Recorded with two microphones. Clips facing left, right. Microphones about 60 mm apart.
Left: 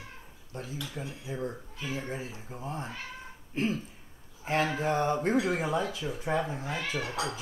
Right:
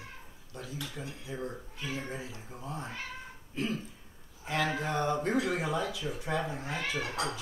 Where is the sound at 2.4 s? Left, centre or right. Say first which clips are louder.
Left 3 dB; left.